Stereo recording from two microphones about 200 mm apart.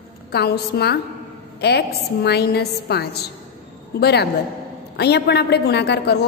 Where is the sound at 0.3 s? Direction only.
55° left (ahead or behind).